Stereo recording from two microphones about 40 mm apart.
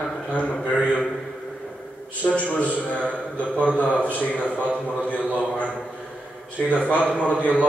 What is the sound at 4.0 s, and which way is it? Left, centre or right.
Speech, left.